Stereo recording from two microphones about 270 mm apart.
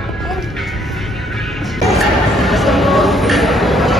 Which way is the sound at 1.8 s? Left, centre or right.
Centre.